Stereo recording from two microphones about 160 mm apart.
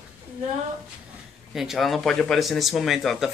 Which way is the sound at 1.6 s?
Centre (ahead or behind).